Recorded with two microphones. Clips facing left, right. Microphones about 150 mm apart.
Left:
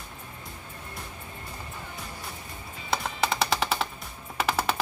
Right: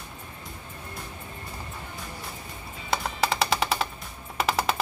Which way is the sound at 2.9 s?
Centre (ahead or behind).